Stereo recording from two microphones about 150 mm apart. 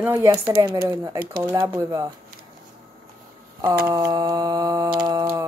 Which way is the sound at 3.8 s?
20° right (ahead or behind).